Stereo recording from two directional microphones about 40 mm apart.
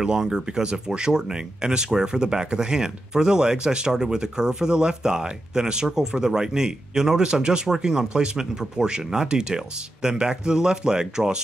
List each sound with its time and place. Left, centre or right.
0.2 s speech: centre